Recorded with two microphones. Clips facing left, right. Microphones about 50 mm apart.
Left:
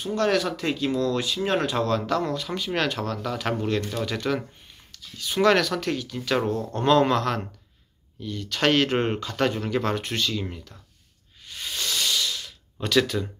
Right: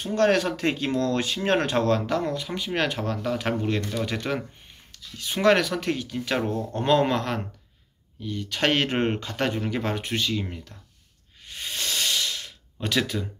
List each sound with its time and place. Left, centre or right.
0.0 s speech: right
11.4 s hiss: right
12.8 s speech: right